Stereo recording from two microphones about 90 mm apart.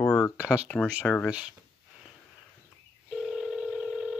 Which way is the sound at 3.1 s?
5° right (ahead or behind).